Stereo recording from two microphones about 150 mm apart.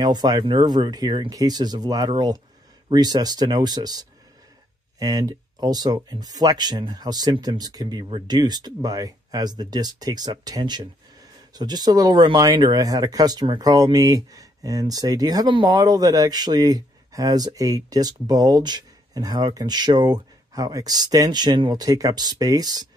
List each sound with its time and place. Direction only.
0.0 s speech: 25° right (ahead or behind)